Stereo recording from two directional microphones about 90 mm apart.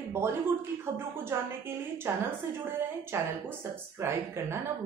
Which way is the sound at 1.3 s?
30° right (ahead or behind).